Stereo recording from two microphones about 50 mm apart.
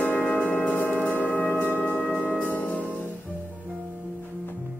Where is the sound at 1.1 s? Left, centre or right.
Left.